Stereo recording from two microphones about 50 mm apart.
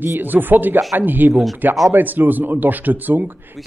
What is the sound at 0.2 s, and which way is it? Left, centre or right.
A man's voice, right.